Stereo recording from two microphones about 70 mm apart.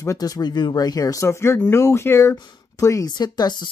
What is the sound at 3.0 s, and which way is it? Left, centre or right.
Speech, left.